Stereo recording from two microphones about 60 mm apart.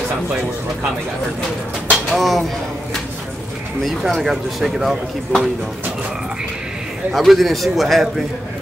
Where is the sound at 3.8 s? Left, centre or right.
Centre.